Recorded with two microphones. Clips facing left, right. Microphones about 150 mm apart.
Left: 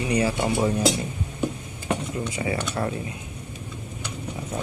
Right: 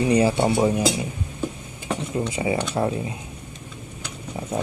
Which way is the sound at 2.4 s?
20° right (ahead or behind).